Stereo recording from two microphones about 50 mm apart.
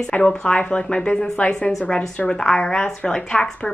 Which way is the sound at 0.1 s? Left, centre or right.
Centre.